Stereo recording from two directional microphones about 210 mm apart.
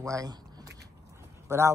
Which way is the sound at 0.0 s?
15° right (ahead or behind).